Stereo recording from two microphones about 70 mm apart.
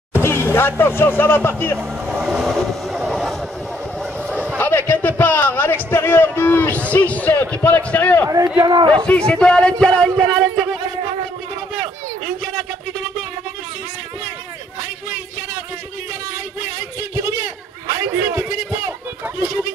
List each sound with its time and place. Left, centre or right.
0.2 s speech: left
2.0 s vehicle: centre
2.4 s vehicle: centre
3.1 s a sound: centre
4.6 s a sound: left
6.7 s a man's voice: left
8.6 s a man's voice: right
9.0 s speech: centre
17.1 s a sound: right